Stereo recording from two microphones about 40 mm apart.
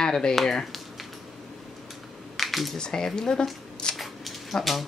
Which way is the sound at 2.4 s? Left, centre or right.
Centre.